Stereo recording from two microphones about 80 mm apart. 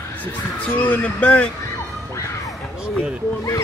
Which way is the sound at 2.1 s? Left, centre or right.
Left.